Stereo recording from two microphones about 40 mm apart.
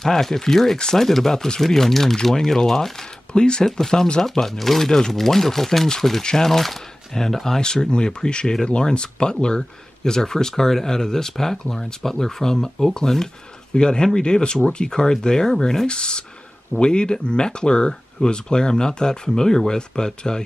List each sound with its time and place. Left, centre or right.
0.0 s speech: centre
3.3 s speech: left